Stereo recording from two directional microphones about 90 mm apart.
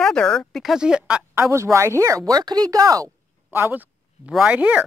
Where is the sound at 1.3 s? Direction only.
30° right (ahead or behind).